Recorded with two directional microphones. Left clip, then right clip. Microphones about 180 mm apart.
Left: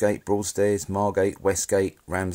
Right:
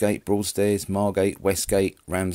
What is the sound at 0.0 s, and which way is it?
Speech, 30° right (ahead or behind).